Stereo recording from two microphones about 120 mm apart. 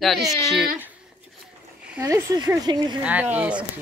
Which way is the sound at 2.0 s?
30° right (ahead or behind).